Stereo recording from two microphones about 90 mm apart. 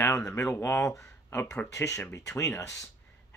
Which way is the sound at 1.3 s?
20° left (ahead or behind).